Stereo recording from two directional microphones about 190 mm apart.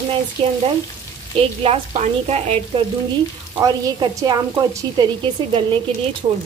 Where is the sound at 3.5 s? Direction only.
20° right (ahead or behind).